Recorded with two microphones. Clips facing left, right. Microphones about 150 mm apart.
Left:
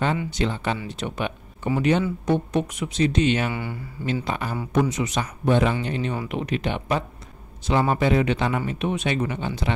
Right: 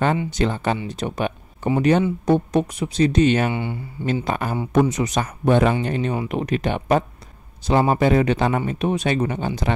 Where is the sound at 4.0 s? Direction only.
45° right (ahead or behind).